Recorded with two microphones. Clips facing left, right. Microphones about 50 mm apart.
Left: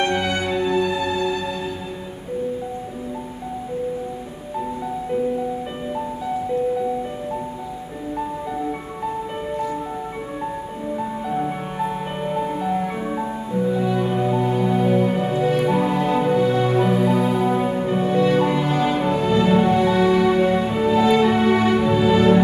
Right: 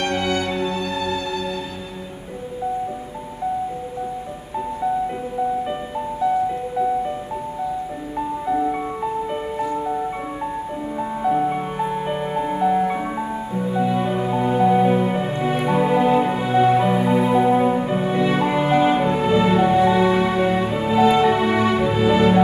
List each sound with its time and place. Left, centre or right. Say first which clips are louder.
0.0 s music: left 1 dB; centre
8.5 s music: right 5 dB; centre
11.0 s music: right 5 dB; centre